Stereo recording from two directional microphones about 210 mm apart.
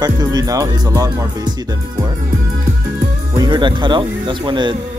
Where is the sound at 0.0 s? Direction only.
20° right (ahead or behind).